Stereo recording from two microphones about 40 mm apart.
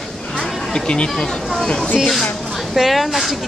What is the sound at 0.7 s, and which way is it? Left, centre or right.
Speech, left.